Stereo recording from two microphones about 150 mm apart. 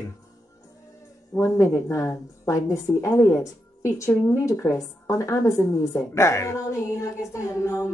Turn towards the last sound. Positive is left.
turn(degrees=20)  # may be behind; listen again after turning